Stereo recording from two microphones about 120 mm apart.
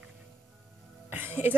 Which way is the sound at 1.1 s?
15° right (ahead or behind).